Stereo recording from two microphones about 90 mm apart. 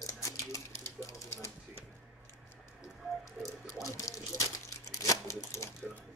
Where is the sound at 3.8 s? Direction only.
35° left (ahead or behind).